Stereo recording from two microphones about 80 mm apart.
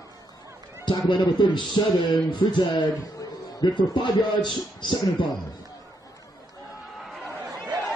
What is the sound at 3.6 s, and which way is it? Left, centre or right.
Speech, left.